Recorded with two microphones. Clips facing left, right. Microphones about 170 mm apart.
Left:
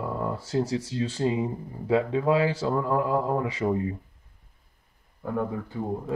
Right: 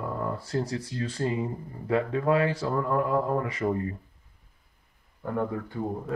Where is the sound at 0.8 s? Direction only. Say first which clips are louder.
Left 3 dB; 30° left (ahead or behind).